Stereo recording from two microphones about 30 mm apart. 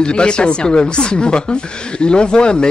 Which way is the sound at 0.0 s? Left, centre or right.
Left.